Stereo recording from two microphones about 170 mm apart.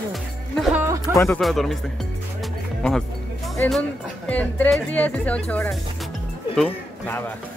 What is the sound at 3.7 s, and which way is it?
A man's voice, 10° left (ahead or behind).